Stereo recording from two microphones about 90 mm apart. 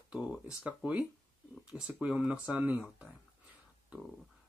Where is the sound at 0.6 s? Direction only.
15° right (ahead or behind).